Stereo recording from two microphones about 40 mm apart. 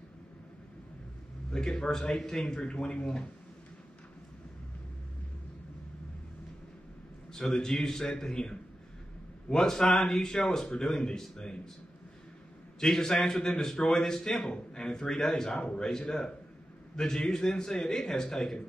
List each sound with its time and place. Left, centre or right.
1.5 s a man's voice: centre
2.6 s speech: centre
7.3 s a man's voice: centre
12.8 s a man's voice: centre